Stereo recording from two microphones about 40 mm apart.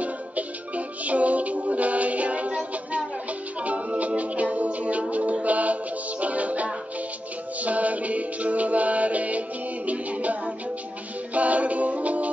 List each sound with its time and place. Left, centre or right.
0.0 s music: right